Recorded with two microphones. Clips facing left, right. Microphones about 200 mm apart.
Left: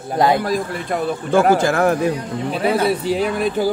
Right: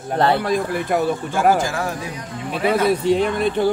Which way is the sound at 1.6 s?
60° left (ahead or behind).